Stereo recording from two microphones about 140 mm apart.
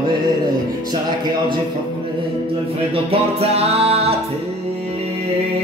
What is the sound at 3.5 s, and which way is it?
Music, 45° right (ahead or behind).